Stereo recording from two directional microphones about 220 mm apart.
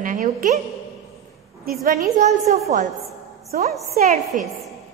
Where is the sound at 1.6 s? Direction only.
45° right (ahead or behind).